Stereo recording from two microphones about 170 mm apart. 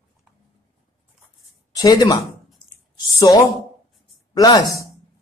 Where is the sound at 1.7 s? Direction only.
25° left (ahead or behind).